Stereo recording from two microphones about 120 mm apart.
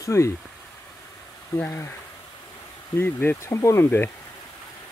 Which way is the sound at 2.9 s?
15° left (ahead or behind).